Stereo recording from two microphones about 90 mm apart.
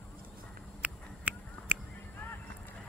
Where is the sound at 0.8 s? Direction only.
15° right (ahead or behind).